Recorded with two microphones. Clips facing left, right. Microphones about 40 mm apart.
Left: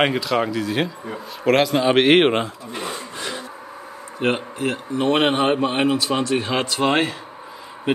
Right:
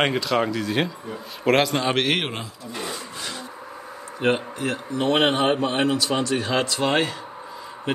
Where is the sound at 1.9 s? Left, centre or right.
Left.